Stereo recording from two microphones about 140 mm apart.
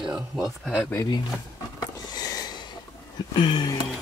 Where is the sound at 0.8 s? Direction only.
15° left (ahead or behind).